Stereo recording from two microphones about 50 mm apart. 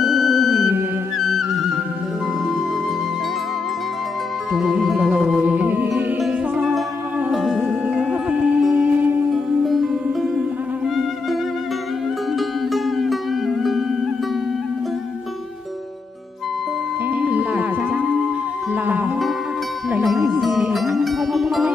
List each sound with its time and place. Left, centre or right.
0.0 s music: centre
4.5 s music: centre
5.4 s music: right
7.2 s music: centre
8.1 s music: right
9.3 s music: centre
12.4 s music: centre
17.2 s music: right
20.0 s music: centre